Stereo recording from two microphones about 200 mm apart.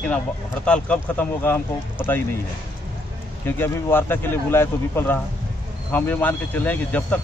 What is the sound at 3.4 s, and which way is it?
Speech, 10° left (ahead or behind).